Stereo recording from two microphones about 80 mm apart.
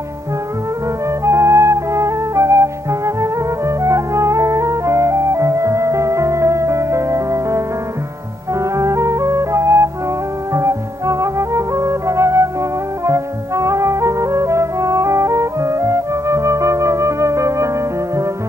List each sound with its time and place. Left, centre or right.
1.2 s flute: right
13.0 s music: right